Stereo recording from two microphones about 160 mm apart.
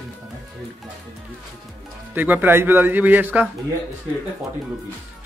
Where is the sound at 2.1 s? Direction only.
10° right (ahead or behind).